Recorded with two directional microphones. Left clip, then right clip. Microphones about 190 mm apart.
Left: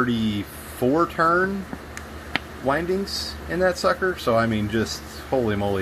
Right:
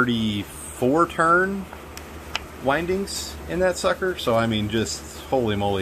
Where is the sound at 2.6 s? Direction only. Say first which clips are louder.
Right 1 dB; centre (ahead or behind).